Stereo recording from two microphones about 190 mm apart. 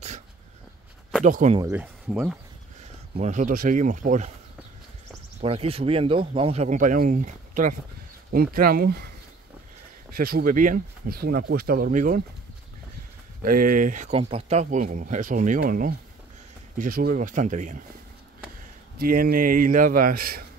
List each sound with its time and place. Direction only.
1.2 s speech: 40° right (ahead or behind)
1.6 s speech: 10° right (ahead or behind)
3.2 s speech: 40° right (ahead or behind)
5.4 s speech: 30° right (ahead or behind); by 9.1 s 55° right (ahead or behind)
10.1 s speech: 50° right (ahead or behind)
13.4 s speech: 45° right (ahead or behind)
18.9 s speech: 50° right (ahead or behind)